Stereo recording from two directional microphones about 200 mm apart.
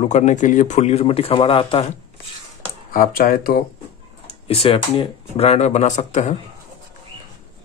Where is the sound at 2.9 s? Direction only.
45° left (ahead or behind).